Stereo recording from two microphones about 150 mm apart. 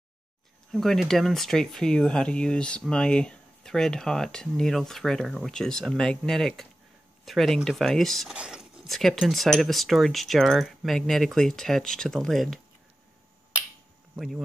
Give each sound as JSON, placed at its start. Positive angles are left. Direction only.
{"t": 0.7, "sound": "speech", "side_deg": 0}
{"t": 14.1, "sound": "speech", "side_deg": 0}